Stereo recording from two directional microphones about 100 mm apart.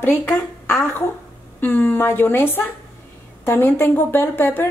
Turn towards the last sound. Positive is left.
turn(degrees=20)  # may be behind; listen again after turning